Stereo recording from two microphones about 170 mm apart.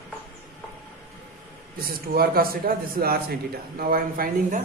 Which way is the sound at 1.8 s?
60° right (ahead or behind).